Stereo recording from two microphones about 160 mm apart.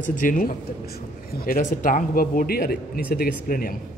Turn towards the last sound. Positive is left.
turn(degrees=60)  # may be behind; listen again after turning